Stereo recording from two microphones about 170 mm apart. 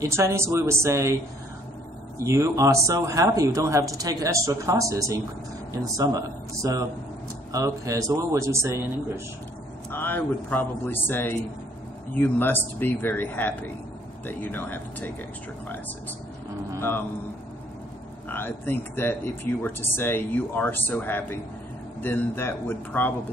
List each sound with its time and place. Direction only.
0.0 s speech: 20° right (ahead or behind)
2.1 s speech: 15° right (ahead or behind)
9.8 s speech: 10° left (ahead or behind)
18.3 s speech: 10° left (ahead or behind)